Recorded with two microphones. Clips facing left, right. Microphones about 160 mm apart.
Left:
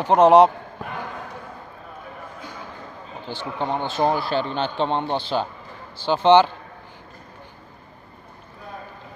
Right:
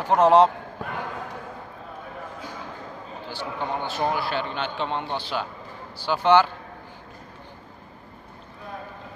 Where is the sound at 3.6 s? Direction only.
30° left (ahead or behind).